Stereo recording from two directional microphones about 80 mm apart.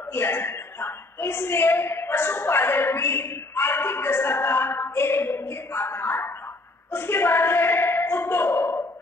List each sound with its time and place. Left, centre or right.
0.1 s a woman's voice: left